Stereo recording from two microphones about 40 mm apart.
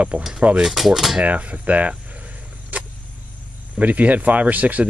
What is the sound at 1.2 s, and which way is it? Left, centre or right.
Speech, right.